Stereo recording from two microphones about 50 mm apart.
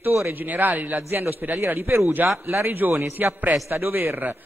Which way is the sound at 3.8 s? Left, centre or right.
Right.